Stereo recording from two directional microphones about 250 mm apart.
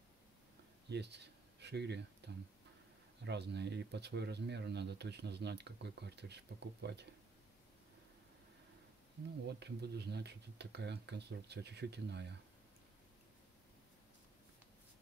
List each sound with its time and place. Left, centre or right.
0.8 s speech: right
9.5 s speech: right